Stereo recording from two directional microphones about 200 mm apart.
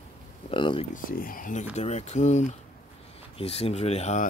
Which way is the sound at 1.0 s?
45° left (ahead or behind).